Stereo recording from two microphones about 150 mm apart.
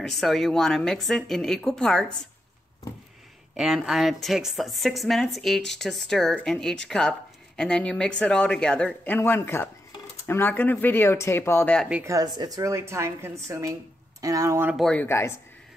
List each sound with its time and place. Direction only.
0.0 s a woman's voice: centre (ahead or behind)
3.5 s a woman's voice: 5° right (ahead or behind); by 11.7 s 15° left (ahead or behind)
11.9 s a woman's voice: 20° right (ahead or behind)
14.8 s speech: 10° left (ahead or behind)